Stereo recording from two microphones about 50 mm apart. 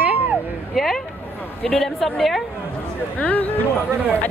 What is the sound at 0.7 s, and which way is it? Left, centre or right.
A woman's voice, centre.